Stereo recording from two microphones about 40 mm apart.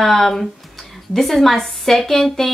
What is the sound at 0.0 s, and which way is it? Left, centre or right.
Speech, centre.